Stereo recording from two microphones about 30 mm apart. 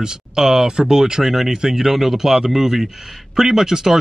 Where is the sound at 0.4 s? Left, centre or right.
Centre.